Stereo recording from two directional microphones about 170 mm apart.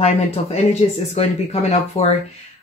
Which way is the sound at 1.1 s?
35° left (ahead or behind).